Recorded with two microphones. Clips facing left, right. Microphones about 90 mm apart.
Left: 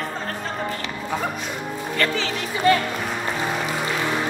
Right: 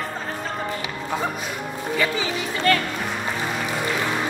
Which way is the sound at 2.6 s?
20° left (ahead or behind).